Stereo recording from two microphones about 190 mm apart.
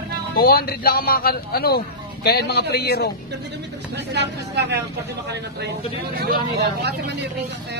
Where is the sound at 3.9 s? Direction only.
60° right (ahead or behind).